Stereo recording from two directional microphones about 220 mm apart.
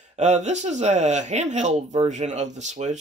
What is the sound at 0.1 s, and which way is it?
Speech, 30° right (ahead or behind).